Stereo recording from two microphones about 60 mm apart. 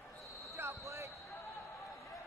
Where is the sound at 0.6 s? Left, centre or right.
Right.